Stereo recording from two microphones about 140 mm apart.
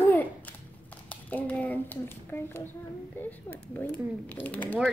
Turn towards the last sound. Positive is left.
turn(degrees=10)  # may be behind; listen again after turning